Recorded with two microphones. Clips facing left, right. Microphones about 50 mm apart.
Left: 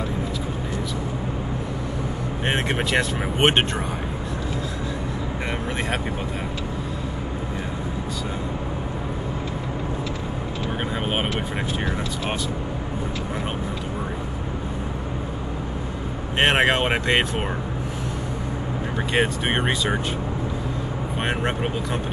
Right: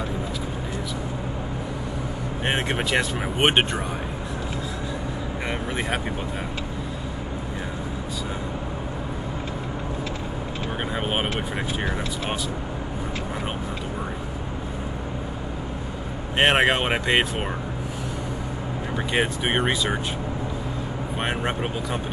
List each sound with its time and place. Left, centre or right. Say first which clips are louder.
2.7 s speech: left 1 dB; centre
16.3 s speech: even; centre
19.1 s speech: left 1 dB; centre
21.2 s speech: left 1 dB; centre